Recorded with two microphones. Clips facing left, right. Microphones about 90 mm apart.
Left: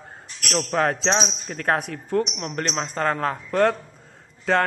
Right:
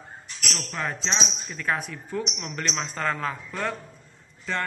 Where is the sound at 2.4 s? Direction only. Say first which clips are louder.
Left 4 dB; 45° left (ahead or behind).